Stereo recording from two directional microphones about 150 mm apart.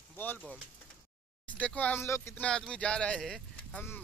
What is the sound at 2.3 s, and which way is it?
Speech, 5° left (ahead or behind).